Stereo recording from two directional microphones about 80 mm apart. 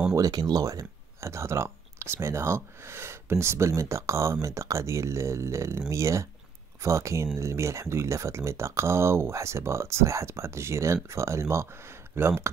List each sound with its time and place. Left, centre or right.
0.1 s speech: right